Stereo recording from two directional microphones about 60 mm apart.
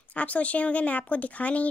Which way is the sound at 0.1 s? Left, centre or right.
Left.